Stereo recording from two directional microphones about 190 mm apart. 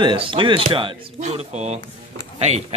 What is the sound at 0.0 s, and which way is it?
Speech, 25° right (ahead or behind).